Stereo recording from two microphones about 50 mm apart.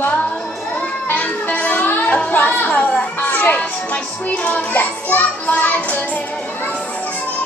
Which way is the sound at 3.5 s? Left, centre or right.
Left.